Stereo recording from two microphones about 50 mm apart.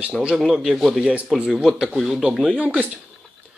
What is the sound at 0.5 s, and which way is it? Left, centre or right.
Speech, centre.